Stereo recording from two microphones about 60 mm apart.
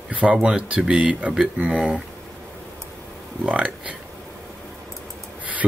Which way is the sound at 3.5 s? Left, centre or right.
Centre.